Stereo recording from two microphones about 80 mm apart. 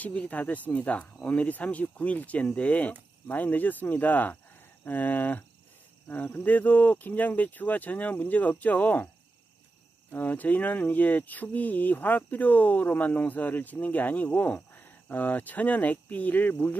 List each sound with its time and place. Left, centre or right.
0.0 s speech: centre
10.1 s speech: left